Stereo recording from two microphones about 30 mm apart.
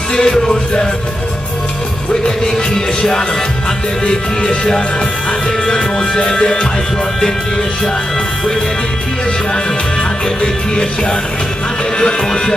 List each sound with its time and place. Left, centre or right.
0.1 s music: left
2.2 s music: left
4.0 s music: left
10.4 s music: left